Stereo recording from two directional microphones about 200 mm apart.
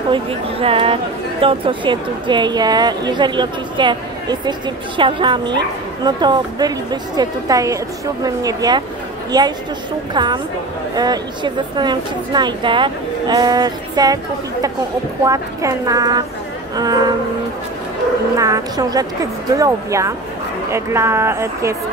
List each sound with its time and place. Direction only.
0.1 s a woman's voice: 25° right (ahead or behind)
18.3 s a woman's voice: 15° right (ahead or behind)